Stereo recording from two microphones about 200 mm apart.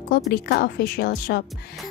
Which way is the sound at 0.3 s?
50° left (ahead or behind).